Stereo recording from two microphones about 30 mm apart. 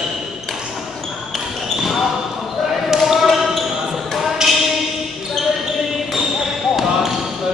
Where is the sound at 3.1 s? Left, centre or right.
Centre.